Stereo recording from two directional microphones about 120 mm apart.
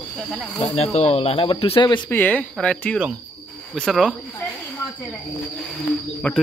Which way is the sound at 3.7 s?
Centre (ahead or behind).